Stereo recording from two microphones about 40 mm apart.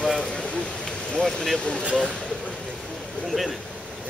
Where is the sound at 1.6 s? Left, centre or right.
Left.